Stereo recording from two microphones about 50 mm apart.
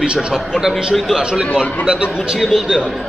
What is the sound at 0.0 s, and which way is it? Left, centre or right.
Speech, right.